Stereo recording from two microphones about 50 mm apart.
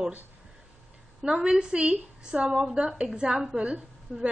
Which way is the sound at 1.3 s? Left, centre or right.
Centre.